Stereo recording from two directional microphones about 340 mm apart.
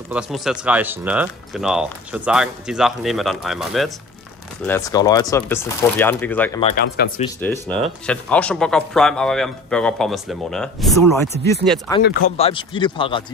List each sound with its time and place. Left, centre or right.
0.1 s speech: centre
6.8 s speech: left
7.3 s speech: centre
12.0 s speech: left
12.4 s speech: centre